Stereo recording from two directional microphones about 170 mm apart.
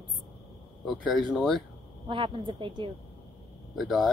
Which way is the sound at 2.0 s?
30° right (ahead or behind).